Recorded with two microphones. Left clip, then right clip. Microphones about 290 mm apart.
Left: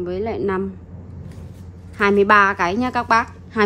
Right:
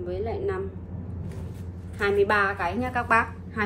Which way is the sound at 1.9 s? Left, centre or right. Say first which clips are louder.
Left 8 dB; left.